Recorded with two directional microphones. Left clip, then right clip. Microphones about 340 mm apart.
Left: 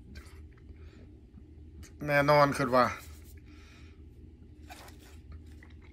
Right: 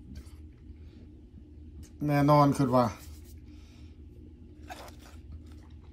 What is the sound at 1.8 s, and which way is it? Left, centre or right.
Speech, centre.